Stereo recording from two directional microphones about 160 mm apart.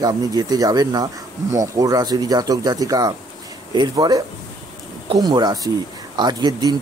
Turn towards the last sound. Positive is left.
turn(degrees=-25)  # may be behind; listen again after turning